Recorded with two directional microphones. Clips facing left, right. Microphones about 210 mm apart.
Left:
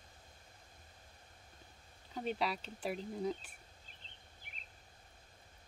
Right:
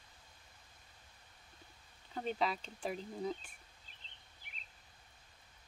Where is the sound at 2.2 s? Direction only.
5° left (ahead or behind).